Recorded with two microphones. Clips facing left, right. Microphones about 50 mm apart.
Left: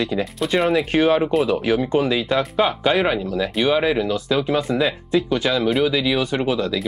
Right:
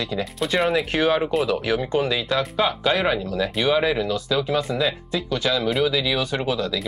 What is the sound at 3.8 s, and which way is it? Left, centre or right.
Speech, centre.